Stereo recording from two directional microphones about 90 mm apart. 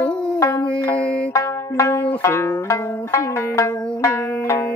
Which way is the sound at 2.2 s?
35° left (ahead or behind).